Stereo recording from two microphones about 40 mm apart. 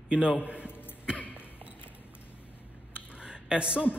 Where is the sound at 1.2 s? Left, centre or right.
Left.